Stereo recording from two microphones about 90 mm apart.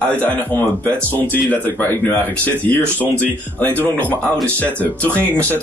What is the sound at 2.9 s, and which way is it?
A man's voice, 20° left (ahead or behind).